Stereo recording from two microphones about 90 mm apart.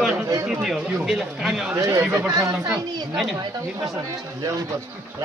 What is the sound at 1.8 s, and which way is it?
Speech, 35° right (ahead or behind).